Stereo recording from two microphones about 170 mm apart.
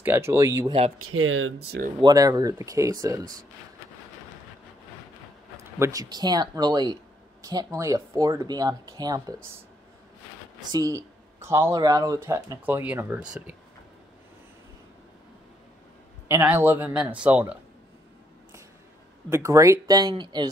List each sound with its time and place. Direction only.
0.0 s speech: 15° right (ahead or behind)
2.0 s speech: 25° right (ahead or behind)
5.8 s speech: 20° right (ahead or behind)
10.7 s speech: 20° right (ahead or behind)
16.3 s speech: 15° right (ahead or behind)
19.2 s speech: 20° right (ahead or behind)